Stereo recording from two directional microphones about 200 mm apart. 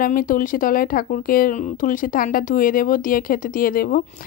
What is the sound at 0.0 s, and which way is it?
Speech, 45° left (ahead or behind).